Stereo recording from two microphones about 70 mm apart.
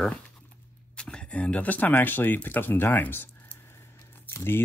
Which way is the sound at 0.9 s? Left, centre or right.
Centre.